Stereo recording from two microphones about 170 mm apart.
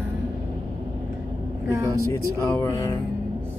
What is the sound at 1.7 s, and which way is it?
Vehicle, 20° right (ahead or behind).